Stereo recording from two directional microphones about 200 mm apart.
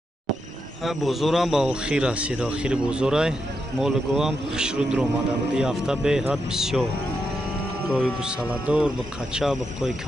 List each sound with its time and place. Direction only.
0.8 s speech: centre (ahead or behind)
7.9 s speech: 5° right (ahead or behind)